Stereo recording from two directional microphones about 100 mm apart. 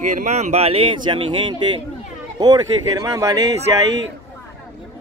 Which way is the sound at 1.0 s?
60° right (ahead or behind).